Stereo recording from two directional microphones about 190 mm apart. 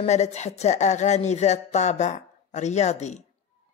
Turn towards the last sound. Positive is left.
turn(degrees=35)  # may be behind; listen again after turning